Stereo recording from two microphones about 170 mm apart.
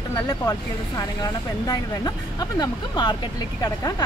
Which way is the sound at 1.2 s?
25° left (ahead or behind).